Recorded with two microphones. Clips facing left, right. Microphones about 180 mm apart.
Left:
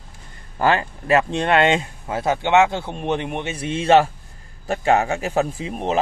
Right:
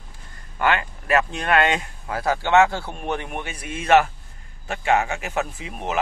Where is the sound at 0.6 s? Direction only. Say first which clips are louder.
Left 3 dB; 30° left (ahead or behind).